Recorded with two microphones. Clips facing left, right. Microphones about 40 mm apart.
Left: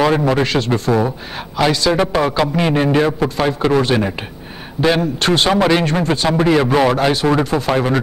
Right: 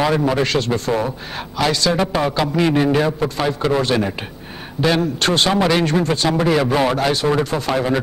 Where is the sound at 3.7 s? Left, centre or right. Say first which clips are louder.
Left 3 dB; centre.